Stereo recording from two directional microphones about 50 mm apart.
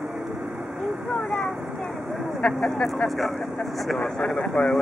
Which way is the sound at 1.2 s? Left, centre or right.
Centre.